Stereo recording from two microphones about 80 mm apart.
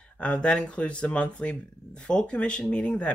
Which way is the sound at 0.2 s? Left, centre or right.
Centre.